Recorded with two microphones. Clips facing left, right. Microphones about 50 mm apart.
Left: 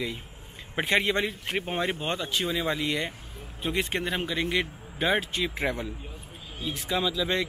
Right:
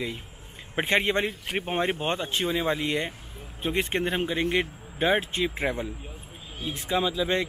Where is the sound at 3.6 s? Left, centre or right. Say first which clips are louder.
Right 2 dB; right.